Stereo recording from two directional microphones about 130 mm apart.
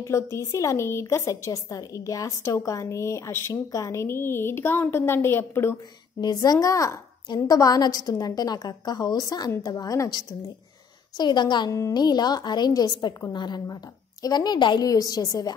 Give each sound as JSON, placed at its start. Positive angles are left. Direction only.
{"t": 0.0, "sound": "a woman's voice", "side_deg": 20}
{"t": 6.2, "sound": "a woman's voice", "side_deg": 30}